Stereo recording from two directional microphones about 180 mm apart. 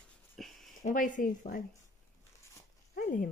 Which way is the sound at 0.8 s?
45° left (ahead or behind).